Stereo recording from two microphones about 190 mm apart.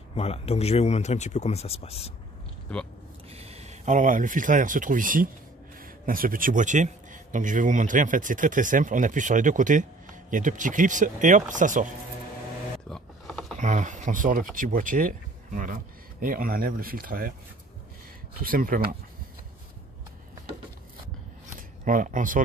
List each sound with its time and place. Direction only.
0.1 s speech: 30° left (ahead or behind)
2.7 s speech: 5° left (ahead or behind)
3.3 s a man's voice: 30° right (ahead or behind)
12.9 s mechanisms: centre (ahead or behind)
13.6 s a man's voice: 40° right (ahead or behind)
18.4 s a man's voice: 50° right (ahead or behind)
21.5 s a sound: 45° right (ahead or behind)